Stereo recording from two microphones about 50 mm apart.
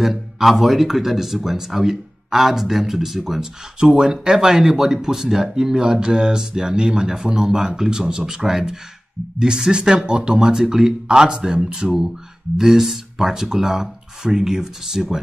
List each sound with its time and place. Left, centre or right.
0.4 s speech: centre
3.8 s speech: centre